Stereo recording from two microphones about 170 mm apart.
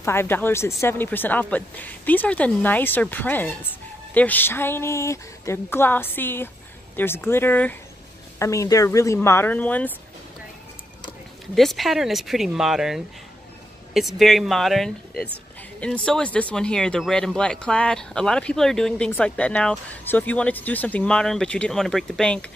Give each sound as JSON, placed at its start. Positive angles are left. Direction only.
{"t": 0.0, "sound": "speech", "side_deg": 15}
{"t": 11.5, "sound": "speech", "side_deg": 0}